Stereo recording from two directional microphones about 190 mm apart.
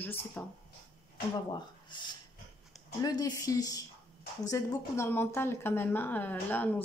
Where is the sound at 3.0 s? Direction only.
20° left (ahead or behind).